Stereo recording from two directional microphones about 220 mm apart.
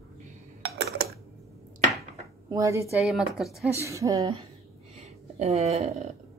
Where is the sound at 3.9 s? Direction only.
15° right (ahead or behind).